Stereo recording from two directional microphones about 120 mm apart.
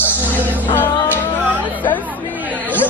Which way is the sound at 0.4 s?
15° right (ahead or behind).